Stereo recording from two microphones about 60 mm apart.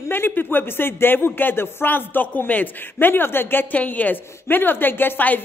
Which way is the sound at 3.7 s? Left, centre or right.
Left.